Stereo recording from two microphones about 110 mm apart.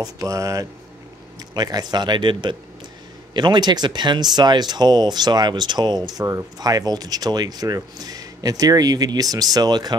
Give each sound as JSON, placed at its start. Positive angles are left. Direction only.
{"t": 0.0, "sound": "speech", "side_deg": -30}